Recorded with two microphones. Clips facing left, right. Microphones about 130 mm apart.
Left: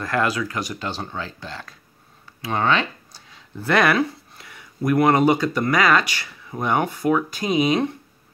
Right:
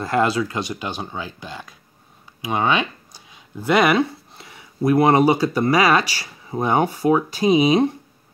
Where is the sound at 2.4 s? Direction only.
15° right (ahead or behind).